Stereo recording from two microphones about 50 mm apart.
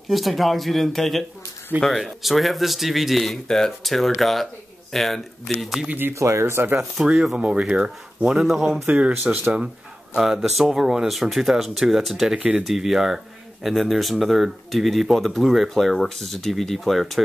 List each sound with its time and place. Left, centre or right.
0.1 s speech: centre
5.9 s speech: right
6.1 s speech: right
7.0 s speech: centre
8.3 s speech: centre
8.8 s speech: right
9.1 s speech: right
10.1 s speech: centre
12.4 s speech: right
12.6 s speech: centre